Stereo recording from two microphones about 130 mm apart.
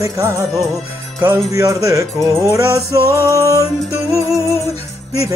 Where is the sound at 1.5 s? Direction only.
25° right (ahead or behind).